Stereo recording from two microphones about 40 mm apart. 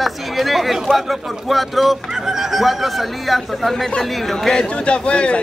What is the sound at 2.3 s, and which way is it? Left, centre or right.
Speech, centre.